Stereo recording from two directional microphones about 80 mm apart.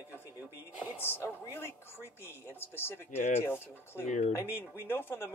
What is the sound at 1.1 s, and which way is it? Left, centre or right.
Speech, left.